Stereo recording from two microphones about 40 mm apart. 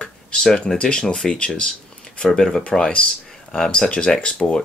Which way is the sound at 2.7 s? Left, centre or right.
Centre.